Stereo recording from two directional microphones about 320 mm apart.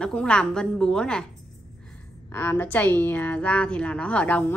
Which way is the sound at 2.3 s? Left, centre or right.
Centre.